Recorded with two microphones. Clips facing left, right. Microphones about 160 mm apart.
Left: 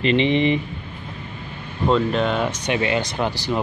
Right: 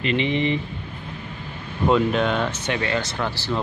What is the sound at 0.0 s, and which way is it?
Speech, 25° left (ahead or behind).